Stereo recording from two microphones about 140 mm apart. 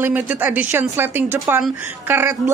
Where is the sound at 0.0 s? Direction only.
15° right (ahead or behind).